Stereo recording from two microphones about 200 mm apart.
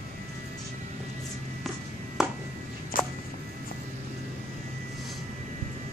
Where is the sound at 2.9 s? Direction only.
45° left (ahead or behind).